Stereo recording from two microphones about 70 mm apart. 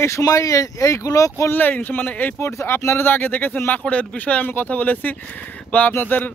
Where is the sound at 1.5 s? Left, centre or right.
Left.